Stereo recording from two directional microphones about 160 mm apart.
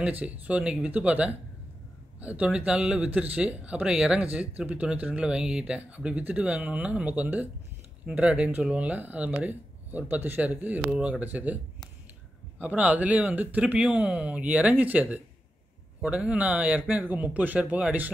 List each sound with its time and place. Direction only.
0.0 s speech: 10° right (ahead or behind)